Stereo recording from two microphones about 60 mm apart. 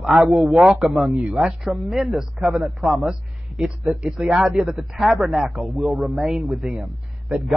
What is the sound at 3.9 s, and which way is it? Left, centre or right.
A man's voice, centre.